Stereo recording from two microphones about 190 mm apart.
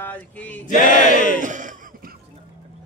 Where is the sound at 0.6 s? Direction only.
40° left (ahead or behind).